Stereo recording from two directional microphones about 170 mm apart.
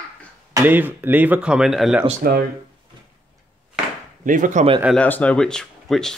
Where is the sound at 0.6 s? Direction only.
10° right (ahead or behind).